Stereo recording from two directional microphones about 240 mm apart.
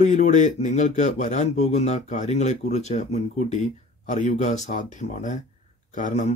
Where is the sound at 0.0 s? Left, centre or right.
Left.